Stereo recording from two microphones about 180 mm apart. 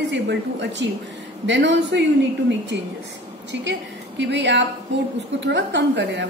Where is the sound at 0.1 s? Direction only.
75° right (ahead or behind).